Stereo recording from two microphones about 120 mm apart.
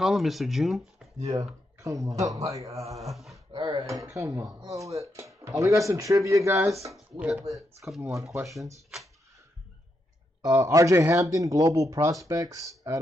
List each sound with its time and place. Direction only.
0.0 s speech: centre (ahead or behind)
1.8 s speech: 25° right (ahead or behind)
3.5 s a sound: 45° right (ahead or behind)
3.8 s speech: 25° right (ahead or behind)
7.2 s speech: 10° right (ahead or behind)
8.0 s speech: 25° right (ahead or behind)
10.4 s speech: 25° right (ahead or behind)